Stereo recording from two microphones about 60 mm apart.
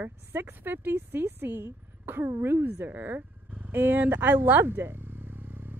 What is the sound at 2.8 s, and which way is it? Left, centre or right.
A woman's voice, right.